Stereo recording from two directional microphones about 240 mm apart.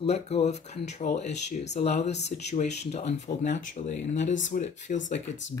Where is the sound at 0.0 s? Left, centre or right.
Left.